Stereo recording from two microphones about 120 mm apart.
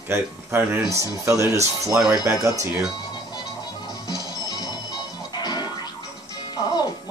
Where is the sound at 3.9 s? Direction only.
30° left (ahead or behind).